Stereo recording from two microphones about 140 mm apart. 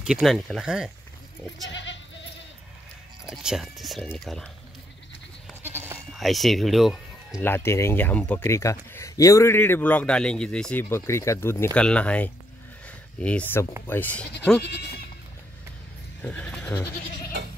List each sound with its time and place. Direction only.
0.0 s speech: 5° right (ahead or behind)
3.3 s speech: 5° right (ahead or behind)
5.6 s goat: 15° right (ahead or behind)
6.1 s speech: centre (ahead or behind)
7.4 s speech: 15° left (ahead or behind)
12.8 s a sound: 10° left (ahead or behind)
13.8 s speech: 15° left (ahead or behind)
16.2 s speech: 10° left (ahead or behind)